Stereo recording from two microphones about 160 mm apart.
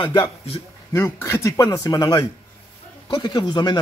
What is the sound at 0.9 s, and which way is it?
Speech, 15° left (ahead or behind).